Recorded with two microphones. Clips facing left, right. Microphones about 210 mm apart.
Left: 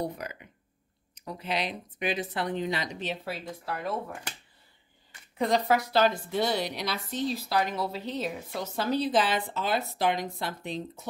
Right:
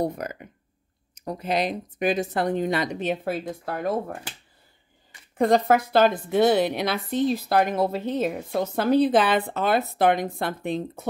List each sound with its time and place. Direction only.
0.0 s speech: 45° right (ahead or behind)
5.4 s a woman's voice: 50° right (ahead or behind)